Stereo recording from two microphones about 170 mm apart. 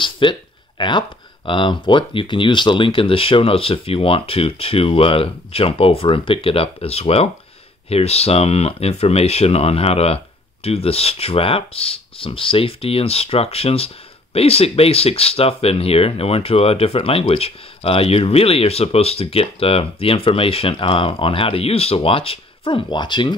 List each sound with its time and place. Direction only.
0.0 s speech: 30° left (ahead or behind)